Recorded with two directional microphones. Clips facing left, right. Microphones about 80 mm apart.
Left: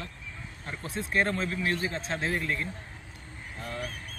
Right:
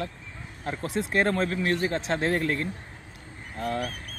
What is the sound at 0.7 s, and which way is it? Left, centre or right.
Speech, right.